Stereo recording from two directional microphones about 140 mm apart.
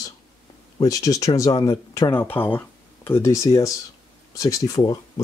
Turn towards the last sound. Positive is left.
turn(degrees=25)  # may be behind; listen again after turning